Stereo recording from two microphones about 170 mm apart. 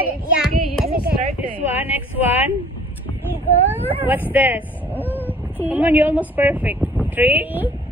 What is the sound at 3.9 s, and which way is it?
A woman's voice, 10° right (ahead or behind).